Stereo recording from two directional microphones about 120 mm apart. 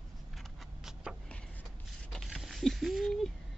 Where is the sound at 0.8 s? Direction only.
5° right (ahead or behind).